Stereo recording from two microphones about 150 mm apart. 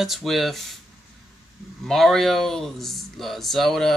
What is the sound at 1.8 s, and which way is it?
Speech, centre (ahead or behind).